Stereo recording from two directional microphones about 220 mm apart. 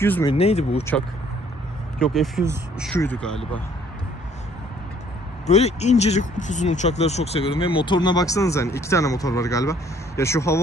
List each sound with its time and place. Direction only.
0.0 s speech: 10° left (ahead or behind)
0.3 s speech: 25° left (ahead or behind)
2.0 s speech: centre (ahead or behind)
5.5 s speech: 30° left (ahead or behind); by 10.6 s 15° left (ahead or behind)